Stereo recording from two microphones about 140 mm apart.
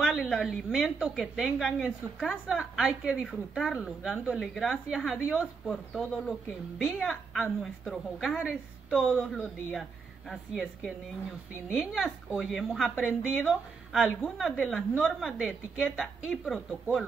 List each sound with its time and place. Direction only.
0.0 s a woman's voice: 5° right (ahead or behind)